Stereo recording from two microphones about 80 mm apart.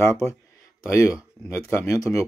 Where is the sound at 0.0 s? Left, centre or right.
Left.